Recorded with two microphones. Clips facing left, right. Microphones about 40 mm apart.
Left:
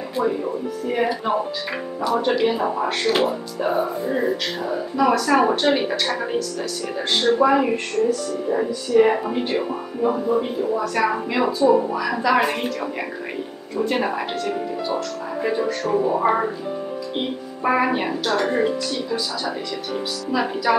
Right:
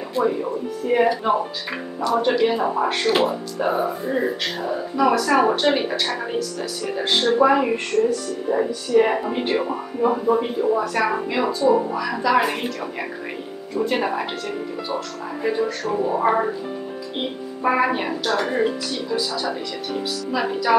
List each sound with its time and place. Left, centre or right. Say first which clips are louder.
0.1 s a woman's voice: right 1 dB; centre
2.0 s a woman's voice: right 1 dB; centre
9.3 s speech: right 1 dB; right
9.6 s a woman's voice: right 1 dB; centre